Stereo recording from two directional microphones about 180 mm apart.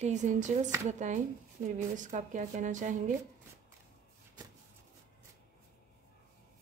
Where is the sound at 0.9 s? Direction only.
40° right (ahead or behind).